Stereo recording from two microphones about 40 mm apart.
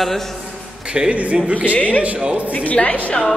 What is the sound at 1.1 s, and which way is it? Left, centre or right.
Speech, right.